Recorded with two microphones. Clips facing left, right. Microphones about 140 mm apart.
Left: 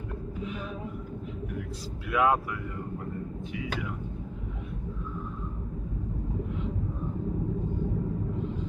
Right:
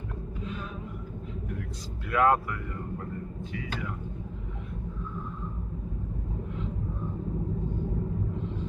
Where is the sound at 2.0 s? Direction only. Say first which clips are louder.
Right 1 dB; 5° left (ahead or behind).